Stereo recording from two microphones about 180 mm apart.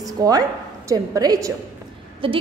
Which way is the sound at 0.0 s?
20° right (ahead or behind).